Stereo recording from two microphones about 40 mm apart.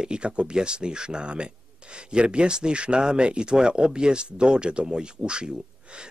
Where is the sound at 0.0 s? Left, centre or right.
Right.